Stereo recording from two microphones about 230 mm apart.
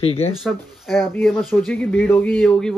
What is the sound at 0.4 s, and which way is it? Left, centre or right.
Speech, centre.